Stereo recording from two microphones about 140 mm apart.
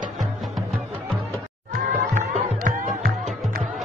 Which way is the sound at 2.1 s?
65° right (ahead or behind).